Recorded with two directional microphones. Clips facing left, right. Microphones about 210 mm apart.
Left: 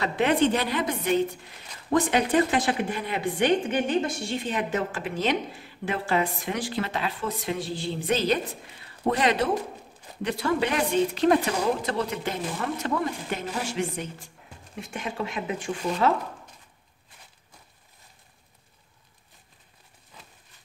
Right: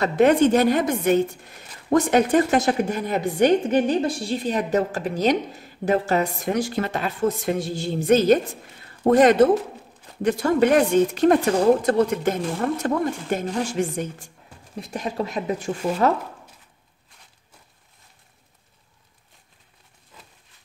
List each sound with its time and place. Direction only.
0.0 s a woman's voice: 45° right (ahead or behind)